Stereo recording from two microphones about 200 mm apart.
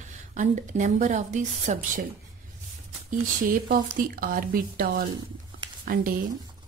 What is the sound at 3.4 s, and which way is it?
Speech, 45° right (ahead or behind).